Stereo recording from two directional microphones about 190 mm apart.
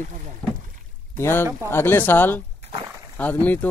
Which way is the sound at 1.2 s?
10° left (ahead or behind).